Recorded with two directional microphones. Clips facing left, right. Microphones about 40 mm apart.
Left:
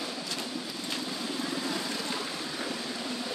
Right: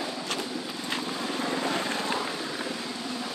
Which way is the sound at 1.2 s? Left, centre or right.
Right.